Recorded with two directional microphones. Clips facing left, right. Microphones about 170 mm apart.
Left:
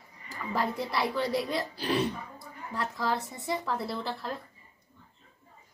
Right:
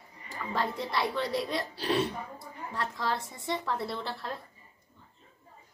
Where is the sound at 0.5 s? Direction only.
5° left (ahead or behind).